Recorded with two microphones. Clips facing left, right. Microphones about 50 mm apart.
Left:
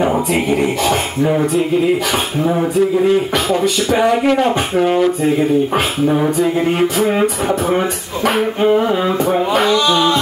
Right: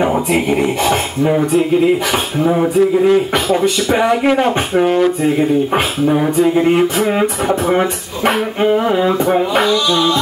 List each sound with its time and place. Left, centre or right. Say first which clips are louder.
2.4 s speech: right 3 dB; centre
3.6 s speech: right 1 dB; right
4.8 s a sound: right 1 dB; centre
6.0 s speech: right 2 dB; centre
8.9 s speech: right 2 dB; centre
9.7 s a sound: left 1 dB; left